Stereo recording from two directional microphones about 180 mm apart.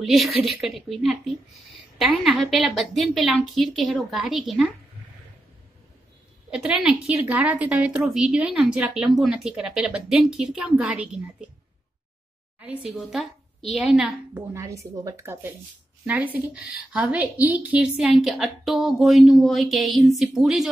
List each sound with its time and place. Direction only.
0.0 s a woman's voice: centre (ahead or behind)
6.5 s a woman's voice: 5° right (ahead or behind)
12.5 s a woman's voice: 5° right (ahead or behind)
14.3 s a woman's voice: 15° right (ahead or behind)